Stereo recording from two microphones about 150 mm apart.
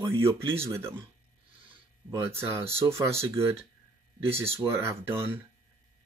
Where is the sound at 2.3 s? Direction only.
15° right (ahead or behind).